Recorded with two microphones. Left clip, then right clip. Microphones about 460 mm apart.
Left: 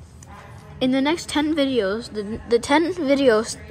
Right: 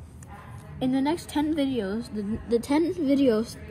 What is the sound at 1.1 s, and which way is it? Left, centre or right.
A woman's voice, left.